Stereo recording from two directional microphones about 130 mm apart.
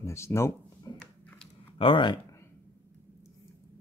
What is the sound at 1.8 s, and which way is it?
Speech, 40° left (ahead or behind).